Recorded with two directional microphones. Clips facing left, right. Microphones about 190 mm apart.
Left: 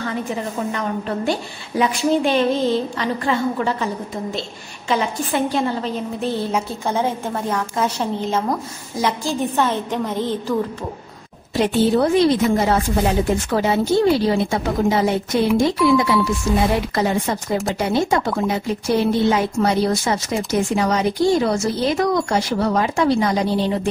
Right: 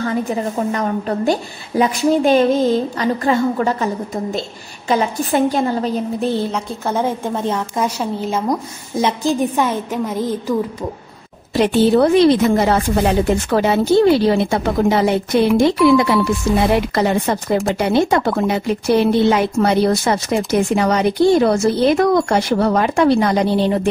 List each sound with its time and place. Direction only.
0.0 s a woman's voice: 40° right (ahead or behind)
7.3 s a woman's voice: 20° right (ahead or behind)
11.5 s a woman's voice: 75° right (ahead or behind)